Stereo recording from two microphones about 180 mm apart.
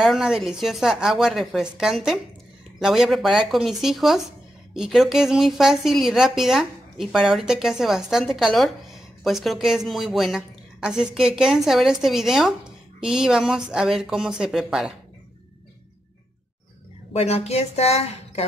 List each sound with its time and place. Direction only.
0.0 s a woman's voice: centre (ahead or behind)
17.1 s a woman's voice: 35° left (ahead or behind)